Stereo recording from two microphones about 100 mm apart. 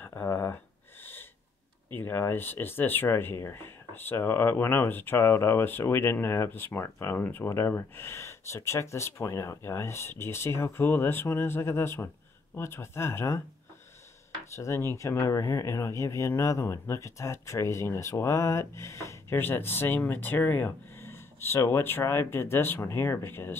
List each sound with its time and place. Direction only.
0.0 s a sound: 20° left (ahead or behind)
2.0 s speech: 20° left (ahead or behind)
14.4 s speech: 30° left (ahead or behind)